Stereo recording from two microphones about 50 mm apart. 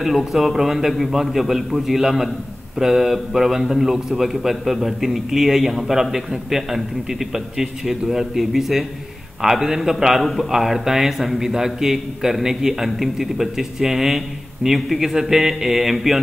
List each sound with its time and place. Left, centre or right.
0.0 s a man's voice: centre